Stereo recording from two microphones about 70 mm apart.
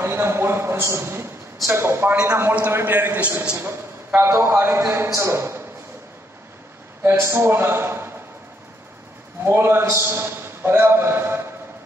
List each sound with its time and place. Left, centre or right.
0.0 s a sound: right
1.7 s a man's voice: right
3.5 s a man's voice: right
7.0 s a man's voice: right
9.4 s a man's voice: right